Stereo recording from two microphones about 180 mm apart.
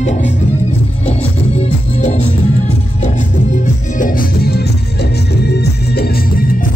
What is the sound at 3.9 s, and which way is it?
Music, 50° left (ahead or behind).